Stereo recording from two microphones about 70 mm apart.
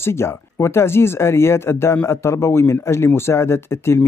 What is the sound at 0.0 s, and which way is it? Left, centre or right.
Speech, left.